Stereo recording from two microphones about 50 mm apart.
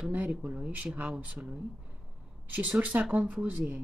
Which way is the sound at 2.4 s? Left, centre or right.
Right.